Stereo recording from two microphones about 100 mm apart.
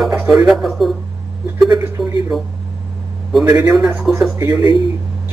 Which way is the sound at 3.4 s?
15° right (ahead or behind).